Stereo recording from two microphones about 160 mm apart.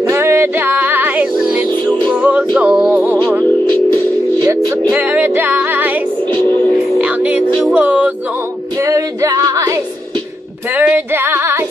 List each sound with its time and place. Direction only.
0.1 s music: 15° right (ahead or behind)
4.4 s music: 25° right (ahead or behind)
8.7 s music: 20° right (ahead or behind)